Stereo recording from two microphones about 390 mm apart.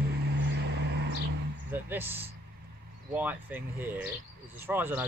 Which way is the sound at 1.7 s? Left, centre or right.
Centre.